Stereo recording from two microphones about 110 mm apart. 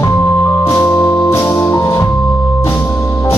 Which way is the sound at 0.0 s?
35° left (ahead or behind).